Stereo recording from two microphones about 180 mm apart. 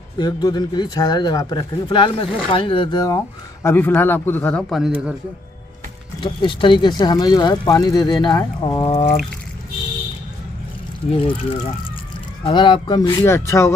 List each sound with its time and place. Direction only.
0.2 s speech: 20° left (ahead or behind)
3.6 s speech: 10° left (ahead or behind); by 5.1 s 5° right (ahead or behind)
6.2 s speech: 25° left (ahead or behind)
11.1 s speech: 30° left (ahead or behind)
12.4 s speech: 25° left (ahead or behind)
13.2 s speech: 15° left (ahead or behind)